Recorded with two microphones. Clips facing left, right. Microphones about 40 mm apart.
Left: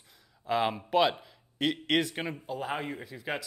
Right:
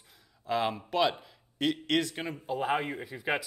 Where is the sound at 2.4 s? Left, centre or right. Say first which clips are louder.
Right 8 dB; centre.